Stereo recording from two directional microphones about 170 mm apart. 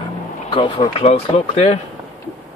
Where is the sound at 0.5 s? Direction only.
30° left (ahead or behind).